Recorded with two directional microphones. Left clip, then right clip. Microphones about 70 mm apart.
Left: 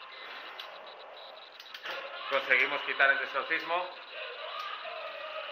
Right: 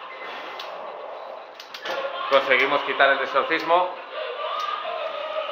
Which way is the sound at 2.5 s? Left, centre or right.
Left.